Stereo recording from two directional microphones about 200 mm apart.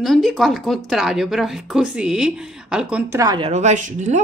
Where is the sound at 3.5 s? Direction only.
35° right (ahead or behind).